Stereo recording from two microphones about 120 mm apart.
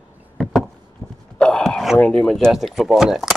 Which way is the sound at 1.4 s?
5° left (ahead or behind).